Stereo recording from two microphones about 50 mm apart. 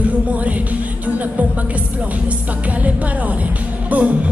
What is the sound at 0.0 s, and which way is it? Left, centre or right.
Music, right.